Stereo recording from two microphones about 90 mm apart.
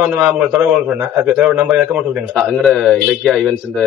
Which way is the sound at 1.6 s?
5° right (ahead or behind).